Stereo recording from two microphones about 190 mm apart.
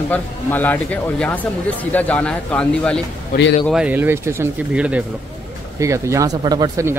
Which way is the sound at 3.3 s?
50° left (ahead or behind).